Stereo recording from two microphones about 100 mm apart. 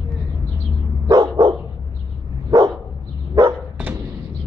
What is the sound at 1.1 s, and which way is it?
Dog, 40° right (ahead or behind).